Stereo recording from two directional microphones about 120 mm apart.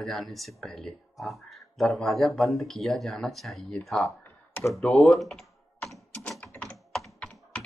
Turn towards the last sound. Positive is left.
turn(degrees=10)  # may be behind; listen again after turning